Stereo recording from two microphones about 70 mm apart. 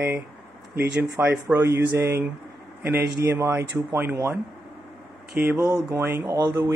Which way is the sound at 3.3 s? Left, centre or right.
Right.